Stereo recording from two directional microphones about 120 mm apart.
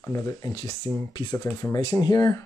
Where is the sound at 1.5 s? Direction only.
25° left (ahead or behind).